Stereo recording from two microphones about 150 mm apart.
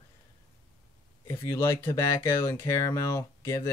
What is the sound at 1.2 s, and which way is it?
Speech, 15° left (ahead or behind).